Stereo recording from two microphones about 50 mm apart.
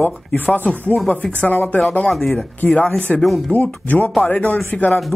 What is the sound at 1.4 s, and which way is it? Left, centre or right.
Speech, left.